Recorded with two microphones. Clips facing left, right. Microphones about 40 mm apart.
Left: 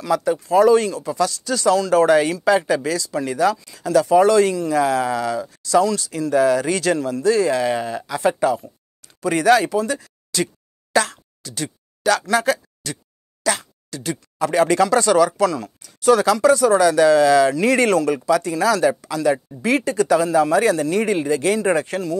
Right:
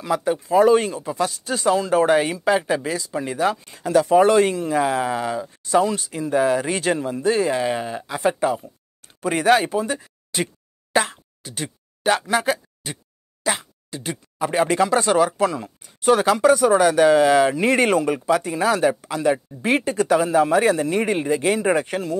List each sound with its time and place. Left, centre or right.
0.0 s speech: right
3.5 s speech: right
9.0 s a sound: right
13.4 s plop: right
14.4 s a man's voice: centre; by 22.2 s right